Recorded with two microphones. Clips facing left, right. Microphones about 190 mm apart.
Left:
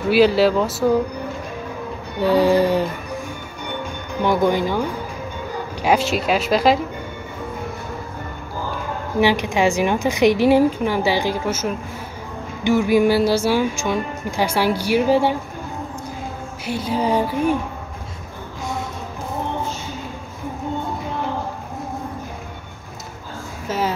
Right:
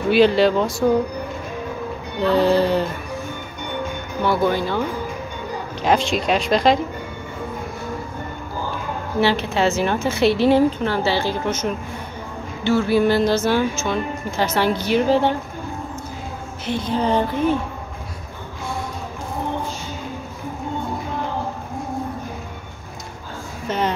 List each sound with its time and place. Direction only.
0.1 s a woman's voice: 5° left (ahead or behind)
2.2 s speech: 10° left (ahead or behind)
4.2 s a woman's voice: 15° left (ahead or behind)
9.2 s speech: 15° left (ahead or behind)
16.6 s speech: 10° left (ahead or behind)
23.7 s speech: 5° left (ahead or behind)